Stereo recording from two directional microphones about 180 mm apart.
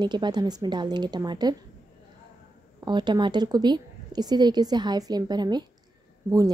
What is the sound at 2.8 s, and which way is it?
Speech, 25° right (ahead or behind).